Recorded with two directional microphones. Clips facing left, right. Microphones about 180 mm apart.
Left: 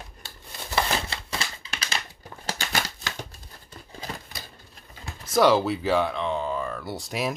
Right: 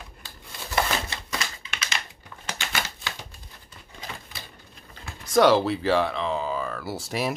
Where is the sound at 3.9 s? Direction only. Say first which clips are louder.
Left 3 dB; 35° left (ahead or behind).